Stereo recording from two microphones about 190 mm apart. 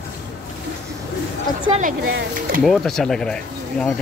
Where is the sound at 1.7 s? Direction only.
40° right (ahead or behind).